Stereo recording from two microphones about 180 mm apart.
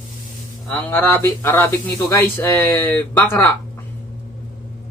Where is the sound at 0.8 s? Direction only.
10° left (ahead or behind).